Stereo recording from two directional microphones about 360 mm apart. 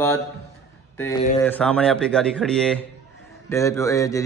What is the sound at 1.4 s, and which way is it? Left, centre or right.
Speech, centre.